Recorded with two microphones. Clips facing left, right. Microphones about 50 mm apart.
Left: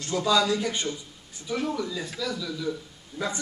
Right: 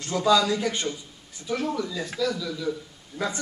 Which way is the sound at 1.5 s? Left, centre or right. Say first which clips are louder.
Right 1 dB; centre.